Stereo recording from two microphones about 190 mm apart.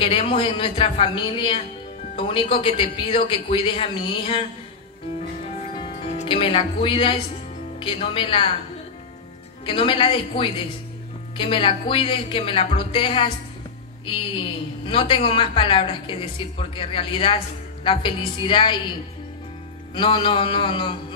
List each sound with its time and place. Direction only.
0.0 s a woman's voice: 30° left (ahead or behind)
5.4 s music: 30° left (ahead or behind)
7.8 s a woman's voice: 30° left (ahead or behind)
9.7 s a woman's voice: 25° left (ahead or behind)
19.9 s a woman's voice: 25° left (ahead or behind)